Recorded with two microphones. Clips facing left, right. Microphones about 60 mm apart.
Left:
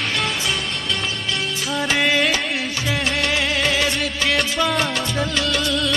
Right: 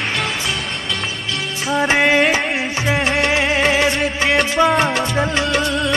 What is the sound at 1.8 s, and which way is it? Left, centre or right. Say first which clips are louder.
Music: right 5 dB; right.